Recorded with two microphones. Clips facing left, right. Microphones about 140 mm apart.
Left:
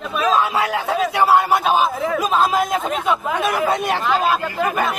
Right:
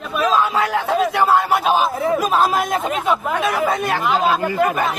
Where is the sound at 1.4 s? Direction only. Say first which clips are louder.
Even; 5° right (ahead or behind).